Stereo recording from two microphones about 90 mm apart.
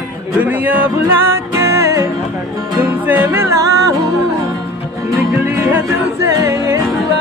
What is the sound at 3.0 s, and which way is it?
Music, 20° right (ahead or behind).